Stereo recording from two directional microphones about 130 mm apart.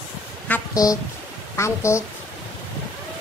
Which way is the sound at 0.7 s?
25° left (ahead or behind).